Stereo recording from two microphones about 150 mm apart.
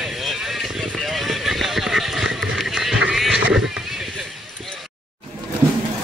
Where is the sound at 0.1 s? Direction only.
Centre (ahead or behind).